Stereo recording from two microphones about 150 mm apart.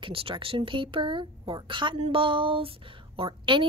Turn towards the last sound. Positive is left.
turn(degrees=-30)  # may be behind; listen again after turning